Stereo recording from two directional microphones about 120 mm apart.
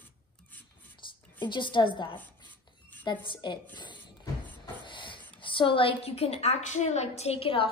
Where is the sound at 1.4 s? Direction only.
40° left (ahead or behind).